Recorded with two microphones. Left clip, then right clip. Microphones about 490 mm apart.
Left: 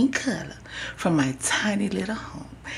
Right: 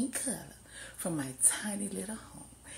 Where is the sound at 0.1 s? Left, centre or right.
Right.